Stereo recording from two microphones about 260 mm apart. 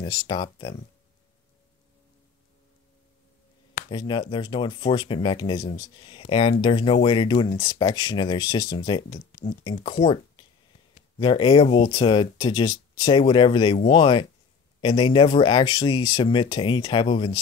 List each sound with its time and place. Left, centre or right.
0.0 s speech: centre
3.9 s speech: centre
9.1 s speech: left
9.6 s speech: centre